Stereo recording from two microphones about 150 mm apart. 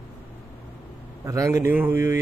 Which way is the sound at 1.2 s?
20° right (ahead or behind).